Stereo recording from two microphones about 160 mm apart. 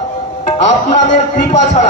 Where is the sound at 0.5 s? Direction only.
45° left (ahead or behind).